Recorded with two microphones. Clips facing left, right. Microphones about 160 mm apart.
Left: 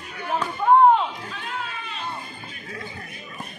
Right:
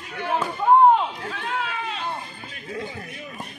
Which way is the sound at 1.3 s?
65° right (ahead or behind).